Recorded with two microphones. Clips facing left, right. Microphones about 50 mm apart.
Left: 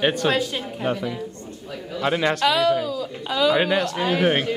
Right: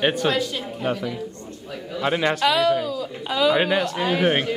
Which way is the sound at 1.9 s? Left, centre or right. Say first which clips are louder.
Even; centre.